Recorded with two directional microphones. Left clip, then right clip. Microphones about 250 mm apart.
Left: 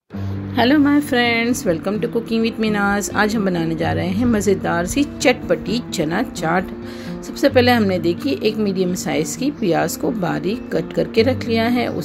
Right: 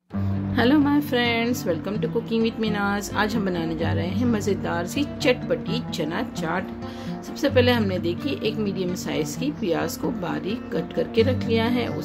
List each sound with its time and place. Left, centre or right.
0.6 s a woman's voice: centre